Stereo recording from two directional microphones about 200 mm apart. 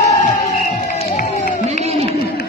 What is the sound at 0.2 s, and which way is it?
Music, 40° left (ahead or behind).